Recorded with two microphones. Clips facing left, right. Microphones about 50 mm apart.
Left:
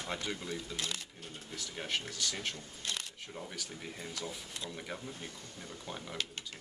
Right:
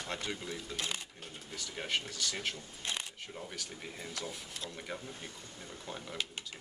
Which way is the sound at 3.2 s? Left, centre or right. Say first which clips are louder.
Even; centre.